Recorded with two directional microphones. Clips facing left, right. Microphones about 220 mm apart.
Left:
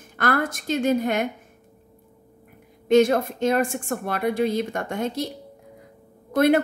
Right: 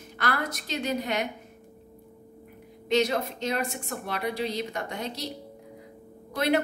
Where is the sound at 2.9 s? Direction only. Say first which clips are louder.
Left 8 dB; 50° left (ahead or behind).